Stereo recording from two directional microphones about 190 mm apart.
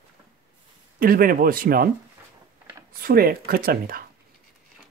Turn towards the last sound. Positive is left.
turn(degrees=-50)  # may be behind; listen again after turning